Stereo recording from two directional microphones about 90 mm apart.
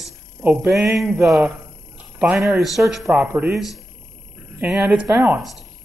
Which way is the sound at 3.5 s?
Centre (ahead or behind).